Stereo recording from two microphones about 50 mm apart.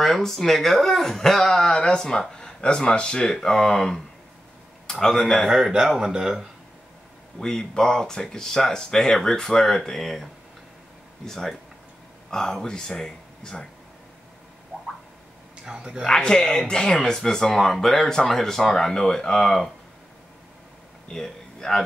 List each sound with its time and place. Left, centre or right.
0.0 s speech: centre
5.0 s speech: centre
5.5 s speech: centre
7.3 s speech: centre
15.6 s speech: centre
16.1 s speech: centre
21.1 s speech: centre